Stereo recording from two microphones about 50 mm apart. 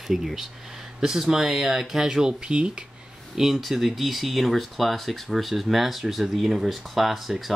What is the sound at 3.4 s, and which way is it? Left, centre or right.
Speech, centre.